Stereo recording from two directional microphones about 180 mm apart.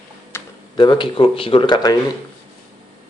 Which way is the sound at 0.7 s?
25° left (ahead or behind).